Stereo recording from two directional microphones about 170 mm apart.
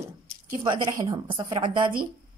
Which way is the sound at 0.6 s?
30° right (ahead or behind).